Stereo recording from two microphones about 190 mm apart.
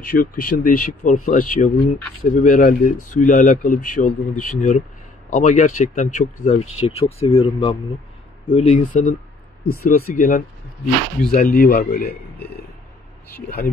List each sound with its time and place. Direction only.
0.1 s a man's voice: 45° left (ahead or behind)